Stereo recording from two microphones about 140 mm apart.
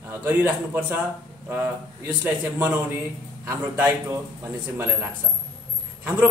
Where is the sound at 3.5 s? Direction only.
20° right (ahead or behind).